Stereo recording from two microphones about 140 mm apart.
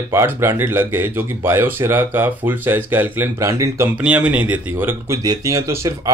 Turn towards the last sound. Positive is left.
turn(degrees=-20)  # may be behind; listen again after turning